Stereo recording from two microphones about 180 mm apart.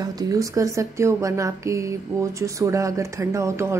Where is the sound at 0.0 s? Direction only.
20° right (ahead or behind).